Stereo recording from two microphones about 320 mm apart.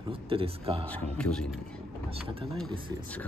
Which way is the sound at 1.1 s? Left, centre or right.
Centre.